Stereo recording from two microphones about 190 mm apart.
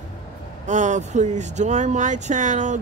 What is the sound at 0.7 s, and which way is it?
Speech, 40° right (ahead or behind).